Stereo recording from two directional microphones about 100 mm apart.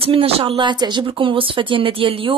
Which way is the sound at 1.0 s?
60° right (ahead or behind).